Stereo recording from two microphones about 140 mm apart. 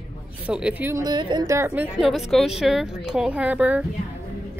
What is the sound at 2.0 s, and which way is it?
A woman's voice, centre (ahead or behind).